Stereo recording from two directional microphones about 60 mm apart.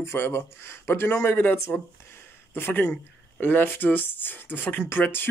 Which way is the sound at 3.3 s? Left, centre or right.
Left.